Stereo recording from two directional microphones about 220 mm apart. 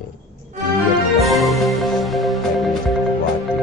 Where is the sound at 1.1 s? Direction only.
Centre (ahead or behind).